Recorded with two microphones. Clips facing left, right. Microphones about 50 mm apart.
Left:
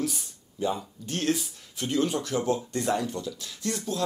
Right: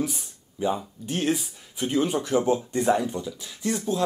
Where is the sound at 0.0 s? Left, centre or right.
Centre.